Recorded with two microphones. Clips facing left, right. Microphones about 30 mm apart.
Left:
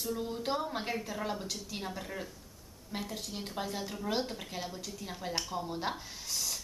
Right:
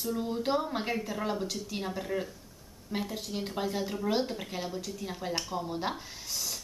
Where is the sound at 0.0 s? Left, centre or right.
Centre.